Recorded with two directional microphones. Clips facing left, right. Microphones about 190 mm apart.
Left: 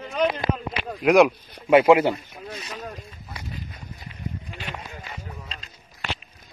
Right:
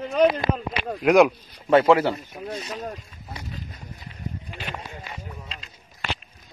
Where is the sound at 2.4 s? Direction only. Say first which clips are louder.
Right 4 dB; 40° right (ahead or behind).